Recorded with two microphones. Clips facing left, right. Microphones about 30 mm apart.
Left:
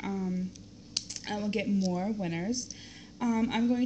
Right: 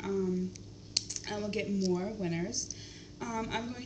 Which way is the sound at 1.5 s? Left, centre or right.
Left.